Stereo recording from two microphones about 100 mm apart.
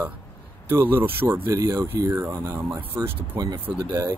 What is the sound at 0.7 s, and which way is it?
Speech, 20° right (ahead or behind).